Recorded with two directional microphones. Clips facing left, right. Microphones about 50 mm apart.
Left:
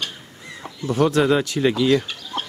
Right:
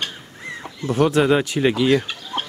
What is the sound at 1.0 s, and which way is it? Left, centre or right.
Speech, right.